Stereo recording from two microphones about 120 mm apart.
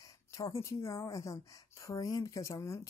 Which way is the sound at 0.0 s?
30° left (ahead or behind).